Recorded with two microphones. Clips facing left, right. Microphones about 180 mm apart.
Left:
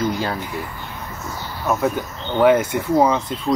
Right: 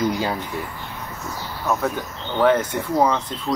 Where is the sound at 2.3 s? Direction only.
10° left (ahead or behind).